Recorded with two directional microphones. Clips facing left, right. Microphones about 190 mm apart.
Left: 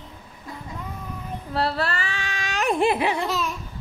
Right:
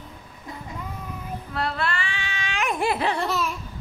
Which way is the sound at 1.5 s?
35° left (ahead or behind).